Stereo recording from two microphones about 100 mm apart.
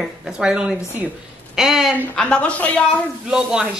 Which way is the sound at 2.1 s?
10° left (ahead or behind).